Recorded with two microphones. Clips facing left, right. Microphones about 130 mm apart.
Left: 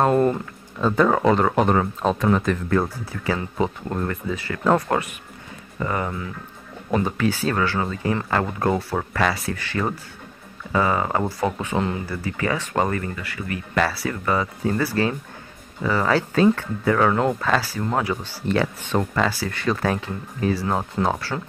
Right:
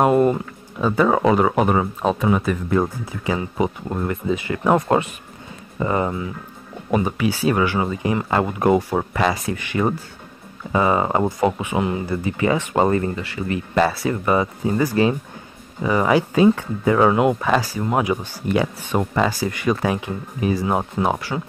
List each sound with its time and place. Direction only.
0.0 s speech: 10° right (ahead or behind)